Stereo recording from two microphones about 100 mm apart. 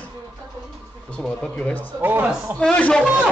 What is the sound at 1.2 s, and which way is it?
Speech, 15° left (ahead or behind).